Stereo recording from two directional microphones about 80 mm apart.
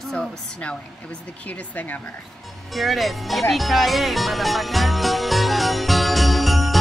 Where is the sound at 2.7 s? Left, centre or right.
Centre.